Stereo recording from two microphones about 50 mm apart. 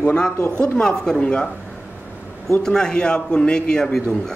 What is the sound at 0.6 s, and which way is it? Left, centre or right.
Speech, centre.